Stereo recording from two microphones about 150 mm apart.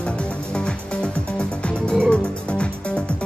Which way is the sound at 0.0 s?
5° left (ahead or behind).